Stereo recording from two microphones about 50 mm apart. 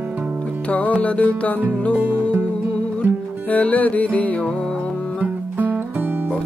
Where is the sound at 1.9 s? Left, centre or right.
Right.